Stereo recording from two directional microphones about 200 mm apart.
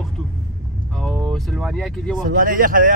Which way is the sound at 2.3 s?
45° right (ahead or behind).